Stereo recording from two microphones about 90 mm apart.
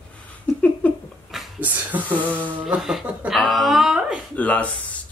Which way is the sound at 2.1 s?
15° left (ahead or behind).